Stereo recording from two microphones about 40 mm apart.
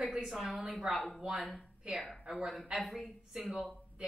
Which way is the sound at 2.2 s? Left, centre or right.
Right.